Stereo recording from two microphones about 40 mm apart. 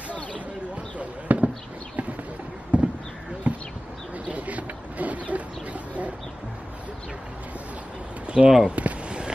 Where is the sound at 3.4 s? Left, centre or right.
Right.